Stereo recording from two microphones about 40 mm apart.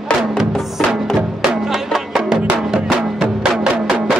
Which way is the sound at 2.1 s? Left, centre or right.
Centre.